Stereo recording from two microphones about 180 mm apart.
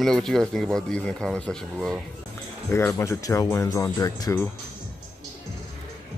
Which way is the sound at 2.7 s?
15° left (ahead or behind).